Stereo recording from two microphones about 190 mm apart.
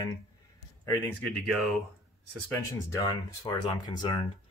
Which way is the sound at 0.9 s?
10° left (ahead or behind).